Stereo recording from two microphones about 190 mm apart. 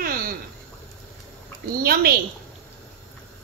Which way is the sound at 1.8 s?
50° right (ahead or behind).